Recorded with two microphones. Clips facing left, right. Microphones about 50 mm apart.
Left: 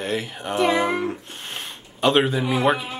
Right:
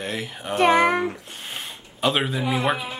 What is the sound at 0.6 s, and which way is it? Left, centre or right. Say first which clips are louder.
Child singing: right 3 dB; right.